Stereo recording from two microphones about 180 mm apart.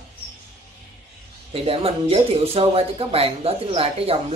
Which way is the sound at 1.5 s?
30° right (ahead or behind).